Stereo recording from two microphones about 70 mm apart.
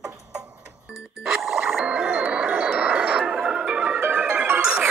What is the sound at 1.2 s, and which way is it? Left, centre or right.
Music, centre.